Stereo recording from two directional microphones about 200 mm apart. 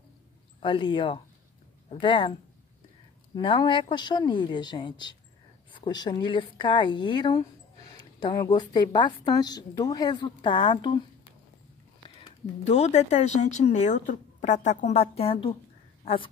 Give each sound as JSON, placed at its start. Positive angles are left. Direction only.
{"t": 0.6, "sound": "a woman's voice", "side_deg": 25}
{"t": 3.3, "sound": "a woman's voice", "side_deg": 25}
{"t": 12.6, "sound": "speech", "side_deg": 35}